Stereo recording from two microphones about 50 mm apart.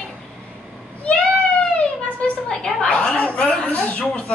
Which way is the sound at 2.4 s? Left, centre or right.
Centre.